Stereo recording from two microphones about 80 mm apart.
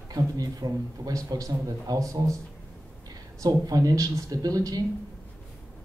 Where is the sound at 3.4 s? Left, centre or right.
Right.